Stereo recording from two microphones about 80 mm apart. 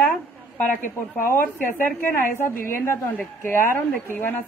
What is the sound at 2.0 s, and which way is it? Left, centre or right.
A woman's voice, left.